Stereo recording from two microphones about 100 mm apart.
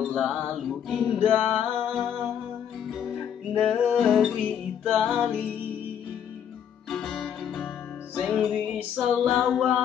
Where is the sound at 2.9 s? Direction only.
Centre (ahead or behind).